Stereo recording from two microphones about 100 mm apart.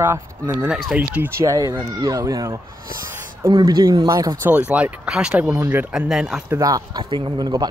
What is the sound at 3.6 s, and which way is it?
Speech, 40° right (ahead or behind).